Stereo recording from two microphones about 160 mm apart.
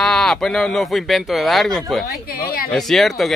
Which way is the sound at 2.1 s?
65° left (ahead or behind).